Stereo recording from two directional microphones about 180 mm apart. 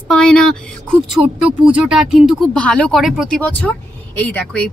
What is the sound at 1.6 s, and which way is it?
Speech, 5° right (ahead or behind).